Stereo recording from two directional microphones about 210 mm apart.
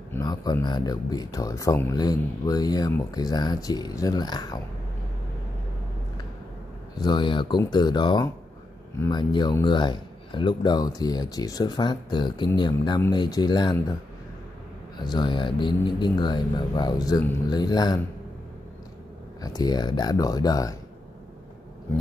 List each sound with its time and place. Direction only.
0.1 s speech: 20° left (ahead or behind)
7.0 s speech: 20° left (ahead or behind)
15.0 s speech: 20° left (ahead or behind)
19.4 s speech: 20° left (ahead or behind)